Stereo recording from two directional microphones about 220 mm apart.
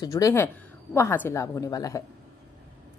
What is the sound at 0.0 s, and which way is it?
A woman's voice, 15° left (ahead or behind).